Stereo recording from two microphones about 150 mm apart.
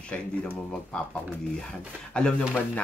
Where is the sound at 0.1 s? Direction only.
10° left (ahead or behind).